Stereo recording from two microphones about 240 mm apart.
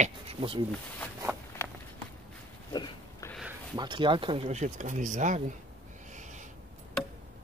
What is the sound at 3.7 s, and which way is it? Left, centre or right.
Speech, centre.